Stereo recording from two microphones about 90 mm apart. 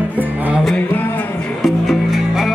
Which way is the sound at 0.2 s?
20° right (ahead or behind).